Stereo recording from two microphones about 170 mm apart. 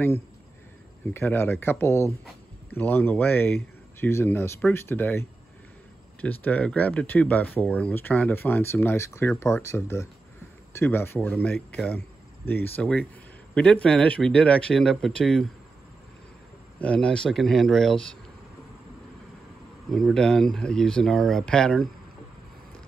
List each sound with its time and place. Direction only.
1.1 s speech: 15° left (ahead or behind)
6.2 s speech: 10° left (ahead or behind)
16.8 s speech: 5° left (ahead or behind)
19.9 s speech: 5° left (ahead or behind)